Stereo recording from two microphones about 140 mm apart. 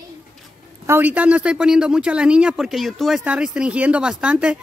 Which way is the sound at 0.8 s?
15° right (ahead or behind).